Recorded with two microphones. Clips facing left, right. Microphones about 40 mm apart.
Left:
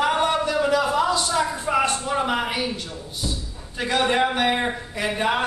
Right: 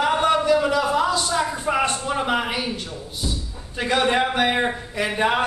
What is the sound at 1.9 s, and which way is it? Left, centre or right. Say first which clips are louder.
Speech: even; centre.